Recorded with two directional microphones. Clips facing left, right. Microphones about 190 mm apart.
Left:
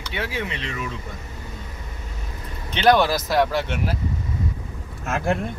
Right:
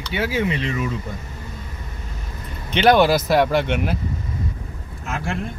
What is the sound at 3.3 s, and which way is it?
Speech, 65° right (ahead or behind).